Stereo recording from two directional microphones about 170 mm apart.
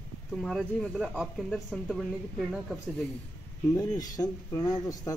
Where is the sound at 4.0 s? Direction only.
20° left (ahead or behind).